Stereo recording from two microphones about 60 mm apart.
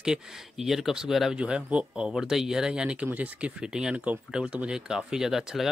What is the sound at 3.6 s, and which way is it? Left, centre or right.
Speech, centre.